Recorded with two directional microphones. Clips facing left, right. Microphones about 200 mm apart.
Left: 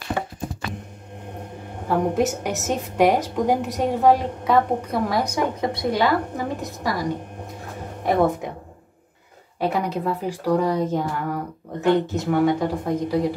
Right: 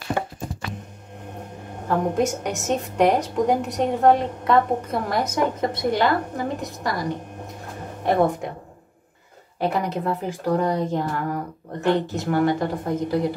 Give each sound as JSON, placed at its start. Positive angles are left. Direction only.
{"t": 1.9, "sound": "a woman's voice", "side_deg": 5}
{"t": 9.6, "sound": "a woman's voice", "side_deg": 0}